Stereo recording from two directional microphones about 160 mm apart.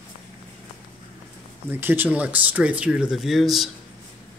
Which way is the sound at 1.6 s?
15° right (ahead or behind).